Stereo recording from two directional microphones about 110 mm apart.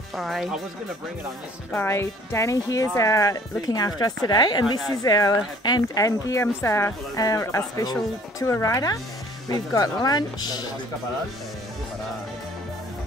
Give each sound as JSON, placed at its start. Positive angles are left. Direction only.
{"t": 0.1, "sound": "speech", "side_deg": 0}
{"t": 1.7, "sound": "speech", "side_deg": 20}